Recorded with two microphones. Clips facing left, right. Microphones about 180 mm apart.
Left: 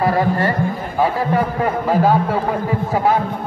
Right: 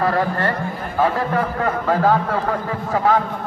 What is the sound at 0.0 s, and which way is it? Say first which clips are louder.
A man's voice: left 3 dB; 10° left (ahead or behind).